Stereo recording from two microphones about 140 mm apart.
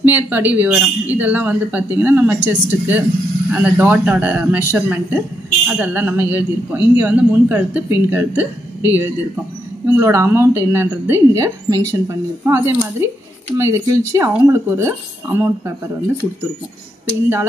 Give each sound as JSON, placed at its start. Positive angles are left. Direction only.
{"t": 0.0, "sound": "a man's voice", "side_deg": -15}